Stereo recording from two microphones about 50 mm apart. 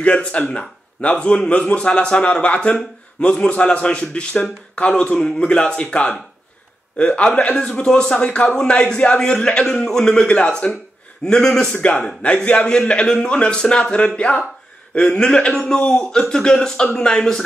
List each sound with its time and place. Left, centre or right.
0.0 s a man's voice: left
15.8 s a man's voice: left
16.1 s speech: centre